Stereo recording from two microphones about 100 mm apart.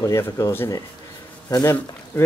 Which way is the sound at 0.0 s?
30° left (ahead or behind).